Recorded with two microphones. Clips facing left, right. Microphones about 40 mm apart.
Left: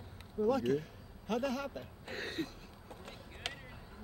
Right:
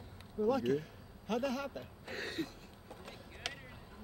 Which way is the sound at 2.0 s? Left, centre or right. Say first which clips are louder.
Even; left.